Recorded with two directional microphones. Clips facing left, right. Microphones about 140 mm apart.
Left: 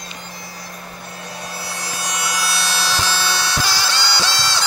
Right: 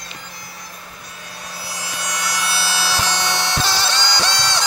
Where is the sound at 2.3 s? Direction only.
Centre (ahead or behind).